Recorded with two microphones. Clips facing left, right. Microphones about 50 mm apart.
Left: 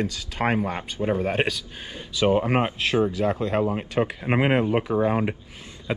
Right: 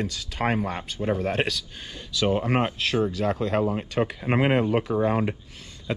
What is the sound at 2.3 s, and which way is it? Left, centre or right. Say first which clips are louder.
Speech: left 2 dB; centre.